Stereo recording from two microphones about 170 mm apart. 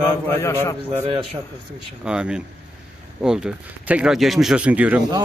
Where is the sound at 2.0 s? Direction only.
5° right (ahead or behind).